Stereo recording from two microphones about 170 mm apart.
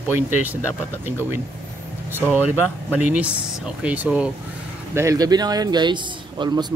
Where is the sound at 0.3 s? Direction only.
10° right (ahead or behind).